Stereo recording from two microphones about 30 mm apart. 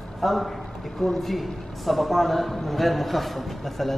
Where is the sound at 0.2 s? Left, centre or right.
Centre.